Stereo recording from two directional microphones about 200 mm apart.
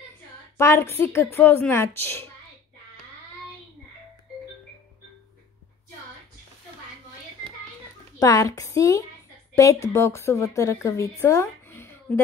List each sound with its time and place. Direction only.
0.6 s a woman's voice: 15° left (ahead or behind)
8.2 s a woman's voice: 15° left (ahead or behind)